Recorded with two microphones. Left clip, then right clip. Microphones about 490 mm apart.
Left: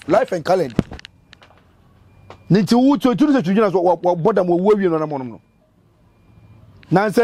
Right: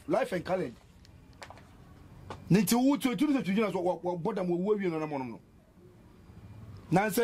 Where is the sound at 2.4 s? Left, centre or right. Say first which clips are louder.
Left 12 dB; left.